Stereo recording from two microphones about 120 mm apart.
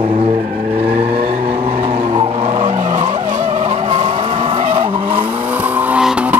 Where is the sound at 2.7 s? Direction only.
80° right.